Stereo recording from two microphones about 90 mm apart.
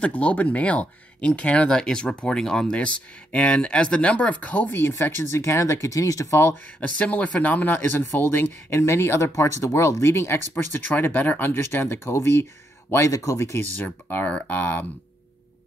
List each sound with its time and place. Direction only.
0.0 s speech: 15° left (ahead or behind); by 6.5 s 35° left (ahead or behind)
6.8 s speech: 15° left (ahead or behind)